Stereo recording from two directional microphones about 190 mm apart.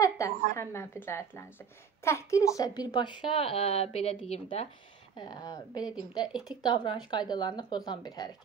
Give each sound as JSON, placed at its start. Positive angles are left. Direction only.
{"t": 0.0, "sound": "a woman's voice", "side_deg": 15}
{"t": 6.2, "sound": "a woman's voice", "side_deg": -5}
{"t": 6.6, "sound": "speech", "side_deg": 25}